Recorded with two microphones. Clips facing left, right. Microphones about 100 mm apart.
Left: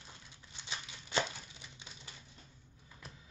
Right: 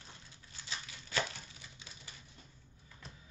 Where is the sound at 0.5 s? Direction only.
20° left (ahead or behind).